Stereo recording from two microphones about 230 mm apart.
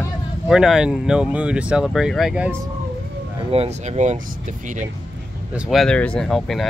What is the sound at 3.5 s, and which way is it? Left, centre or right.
Speech, right.